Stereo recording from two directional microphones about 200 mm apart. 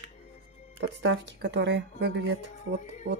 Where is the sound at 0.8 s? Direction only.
60° right (ahead or behind).